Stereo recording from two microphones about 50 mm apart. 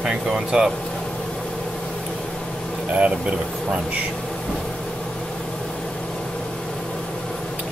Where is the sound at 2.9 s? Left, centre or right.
Right.